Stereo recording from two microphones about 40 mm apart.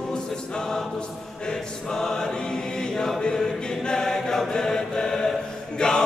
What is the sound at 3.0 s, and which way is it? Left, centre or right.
Chant, centre.